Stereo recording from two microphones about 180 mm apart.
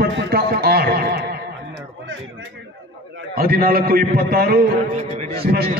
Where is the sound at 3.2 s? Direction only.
55° right (ahead or behind).